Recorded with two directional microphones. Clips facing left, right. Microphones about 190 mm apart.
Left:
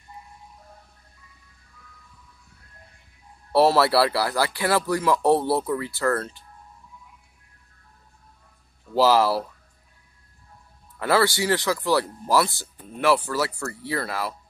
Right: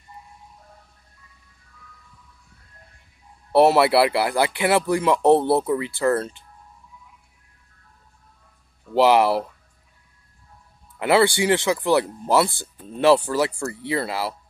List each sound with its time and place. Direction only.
3.5 s speech: 20° right (ahead or behind)
8.9 s speech: 20° right (ahead or behind)
11.0 s speech: 20° right (ahead or behind)